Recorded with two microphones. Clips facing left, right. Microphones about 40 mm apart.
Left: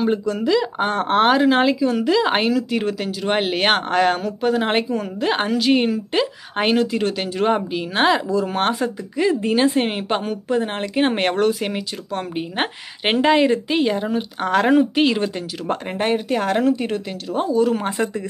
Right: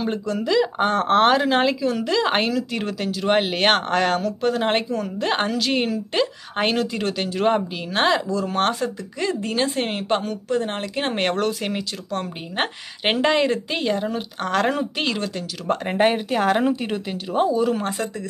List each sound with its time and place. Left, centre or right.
0.0 s a woman's voice: centre
15.9 s speech: centre
17.8 s speech: left